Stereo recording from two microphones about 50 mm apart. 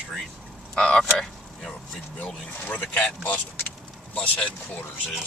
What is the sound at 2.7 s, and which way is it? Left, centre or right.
Speech, left.